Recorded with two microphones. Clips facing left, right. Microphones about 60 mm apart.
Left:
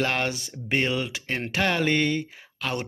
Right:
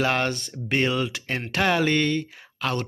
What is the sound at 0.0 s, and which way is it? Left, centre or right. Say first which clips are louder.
Speech: right 2 dB; centre.